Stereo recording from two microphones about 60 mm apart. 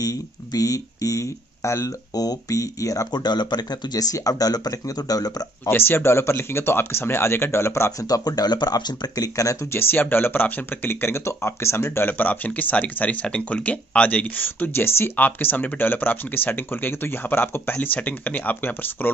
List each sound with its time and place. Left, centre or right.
0.0 s speech: left
2.1 s speech: left
3.9 s speech: left
5.7 s speech: left
8.1 s speech: left
9.7 s speech: left
12.1 s speech: left
17.7 s speech: left